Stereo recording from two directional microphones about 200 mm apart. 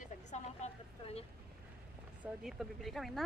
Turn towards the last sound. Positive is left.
turn(degrees=0)  # may be behind; listen again after turning